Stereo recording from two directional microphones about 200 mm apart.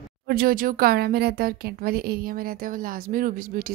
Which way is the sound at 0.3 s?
50° right (ahead or behind).